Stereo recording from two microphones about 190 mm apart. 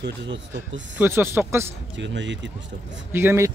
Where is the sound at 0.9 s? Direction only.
10° right (ahead or behind).